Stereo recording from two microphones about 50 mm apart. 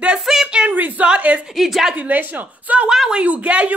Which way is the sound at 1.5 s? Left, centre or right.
Centre.